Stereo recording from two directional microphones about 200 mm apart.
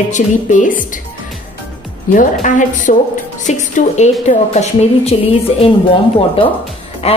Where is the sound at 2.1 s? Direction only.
40° left (ahead or behind).